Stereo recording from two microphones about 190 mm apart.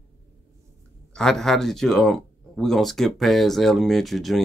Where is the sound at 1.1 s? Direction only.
Centre (ahead or behind).